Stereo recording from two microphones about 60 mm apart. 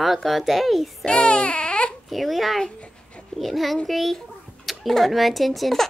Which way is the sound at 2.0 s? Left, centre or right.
Centre.